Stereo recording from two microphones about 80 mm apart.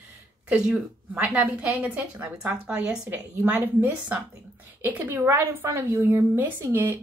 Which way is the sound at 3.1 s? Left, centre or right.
Right.